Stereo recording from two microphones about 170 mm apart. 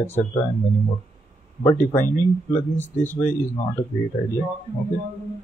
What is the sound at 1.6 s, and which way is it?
Speech, 15° left (ahead or behind).